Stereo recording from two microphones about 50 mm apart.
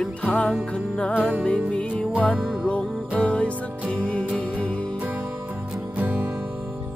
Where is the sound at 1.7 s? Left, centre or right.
Left.